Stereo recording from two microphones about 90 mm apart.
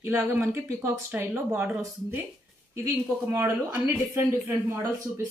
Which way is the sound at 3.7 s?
20° right (ahead or behind).